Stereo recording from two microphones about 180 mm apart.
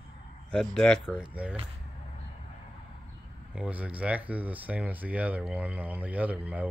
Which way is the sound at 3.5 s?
5° right (ahead or behind).